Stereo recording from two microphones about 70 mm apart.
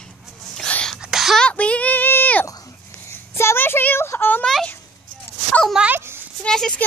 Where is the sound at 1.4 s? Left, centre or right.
Centre.